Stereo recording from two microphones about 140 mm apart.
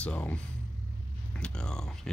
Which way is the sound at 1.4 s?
5° left (ahead or behind).